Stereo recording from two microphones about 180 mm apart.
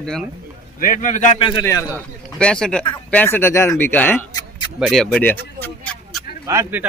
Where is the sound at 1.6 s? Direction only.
15° left (ahead or behind).